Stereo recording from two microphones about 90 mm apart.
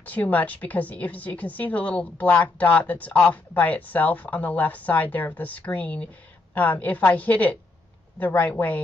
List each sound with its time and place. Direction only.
0.0 s a woman's voice: 20° left (ahead or behind)